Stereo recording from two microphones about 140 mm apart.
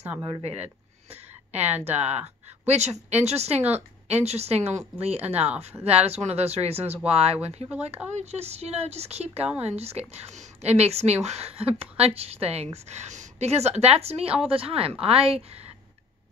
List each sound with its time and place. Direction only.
0.4 s a woman's voice: 45° right (ahead or behind)
1.6 s speech: 10° right (ahead or behind)
2.6 s a woman's voice: 50° right (ahead or behind)